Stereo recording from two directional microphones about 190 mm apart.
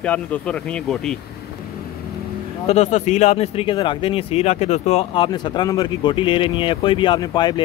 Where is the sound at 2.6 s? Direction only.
35° left (ahead or behind).